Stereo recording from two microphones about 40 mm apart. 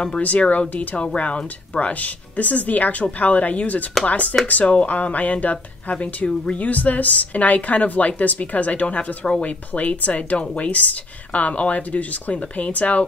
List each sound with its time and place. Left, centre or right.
0.2 s speech: left